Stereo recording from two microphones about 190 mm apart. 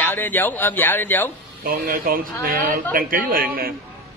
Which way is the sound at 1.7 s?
45° right (ahead or behind).